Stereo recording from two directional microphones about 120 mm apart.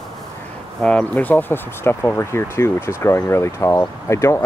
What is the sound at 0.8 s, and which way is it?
Speech, 10° left (ahead or behind).